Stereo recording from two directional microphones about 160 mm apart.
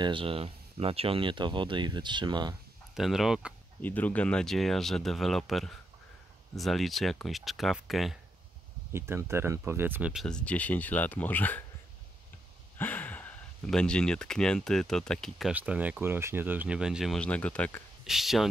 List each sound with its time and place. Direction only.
0.0 s speech: 30° right (ahead or behind)
2.9 s speech: centre (ahead or behind)
3.8 s speech: 10° left (ahead or behind)
8.9 s speech: 15° right (ahead or behind)
10.2 s speech: 5° left (ahead or behind)
12.7 s speech: 10° left (ahead or behind)
18.0 s speech: centre (ahead or behind)